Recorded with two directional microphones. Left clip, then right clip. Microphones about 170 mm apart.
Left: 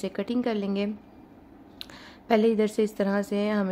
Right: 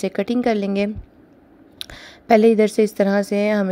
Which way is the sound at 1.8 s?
35° right (ahead or behind).